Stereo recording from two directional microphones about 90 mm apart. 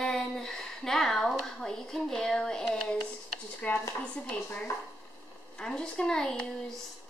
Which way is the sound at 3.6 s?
15° left (ahead or behind).